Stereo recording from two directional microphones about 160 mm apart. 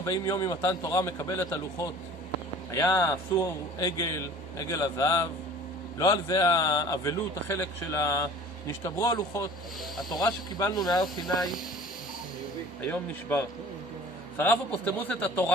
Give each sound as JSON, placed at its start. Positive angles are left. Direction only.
{"t": 0.0, "sound": "a man's voice", "side_deg": 20}
{"t": 11.3, "sound": "speech", "side_deg": 0}
{"t": 12.8, "sound": "a man's voice", "side_deg": 10}